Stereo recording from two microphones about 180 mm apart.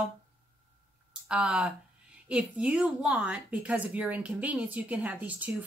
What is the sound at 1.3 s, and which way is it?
A woman's voice, 5° right (ahead or behind).